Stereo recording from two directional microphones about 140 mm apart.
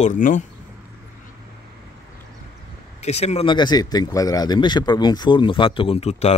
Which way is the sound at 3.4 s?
30° left (ahead or behind).